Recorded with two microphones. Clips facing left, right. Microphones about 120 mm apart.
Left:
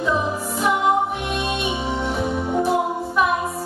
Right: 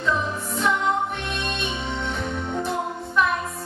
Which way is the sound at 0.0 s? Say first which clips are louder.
Left 3 dB; 10° left (ahead or behind).